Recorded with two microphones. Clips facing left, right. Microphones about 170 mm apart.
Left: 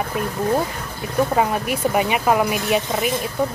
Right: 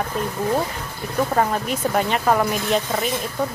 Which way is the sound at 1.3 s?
10° left (ahead or behind).